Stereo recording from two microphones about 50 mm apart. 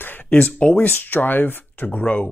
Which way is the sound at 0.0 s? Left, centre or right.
Left.